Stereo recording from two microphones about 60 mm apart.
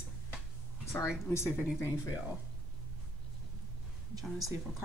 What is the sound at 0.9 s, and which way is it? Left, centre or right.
Speech, left.